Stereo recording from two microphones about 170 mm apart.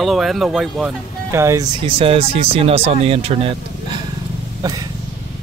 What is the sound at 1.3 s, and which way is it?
Speech, 15° right (ahead or behind).